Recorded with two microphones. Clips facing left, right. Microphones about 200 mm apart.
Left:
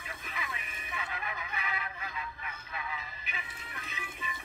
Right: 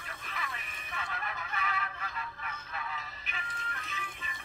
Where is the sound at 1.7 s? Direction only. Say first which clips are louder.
Right 1 dB; 10° left (ahead or behind).